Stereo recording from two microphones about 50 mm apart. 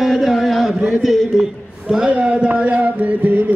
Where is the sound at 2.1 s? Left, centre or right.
Right.